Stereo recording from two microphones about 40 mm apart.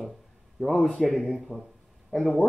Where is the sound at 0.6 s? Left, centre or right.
Centre.